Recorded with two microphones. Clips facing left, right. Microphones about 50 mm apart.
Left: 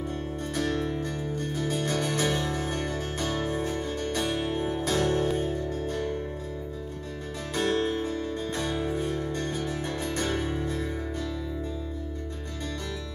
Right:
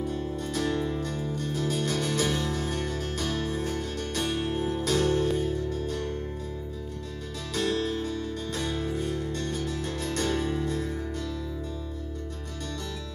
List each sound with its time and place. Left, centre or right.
1.6 s music: centre
7.5 s music: left